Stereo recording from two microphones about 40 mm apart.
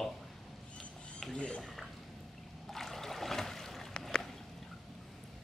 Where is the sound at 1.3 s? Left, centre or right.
Left.